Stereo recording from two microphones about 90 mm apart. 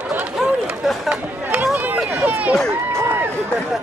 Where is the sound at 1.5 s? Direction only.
20° right (ahead or behind).